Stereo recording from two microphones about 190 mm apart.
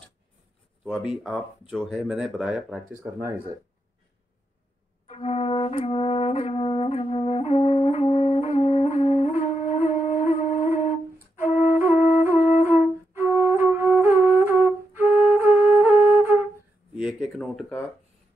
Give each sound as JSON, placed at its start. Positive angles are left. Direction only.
{"t": 0.8, "sound": "speech", "side_deg": 0}
{"t": 2.9, "sound": "speech", "side_deg": -15}
{"t": 5.0, "sound": "brass instrument", "side_deg": 35}
{"t": 10.8, "sound": "flute", "side_deg": 40}
{"t": 12.4, "sound": "music", "side_deg": 40}
{"t": 12.6, "sound": "flute", "side_deg": -10}
{"t": 16.9, "sound": "a sound", "side_deg": -5}